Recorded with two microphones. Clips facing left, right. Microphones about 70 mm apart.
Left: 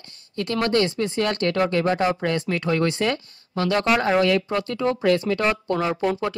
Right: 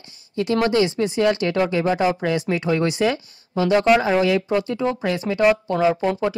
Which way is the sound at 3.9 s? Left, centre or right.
Centre.